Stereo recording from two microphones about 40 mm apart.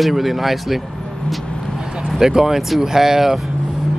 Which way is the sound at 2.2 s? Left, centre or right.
Centre.